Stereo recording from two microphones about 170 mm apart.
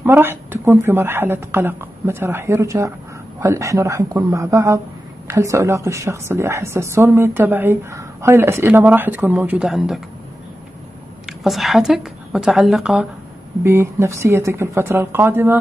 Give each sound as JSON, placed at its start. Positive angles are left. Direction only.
{"t": 0.0, "sound": "a woman's voice", "side_deg": -15}
{"t": 11.4, "sound": "a woman's voice", "side_deg": 0}
{"t": 13.7, "sound": "a woman's voice", "side_deg": -15}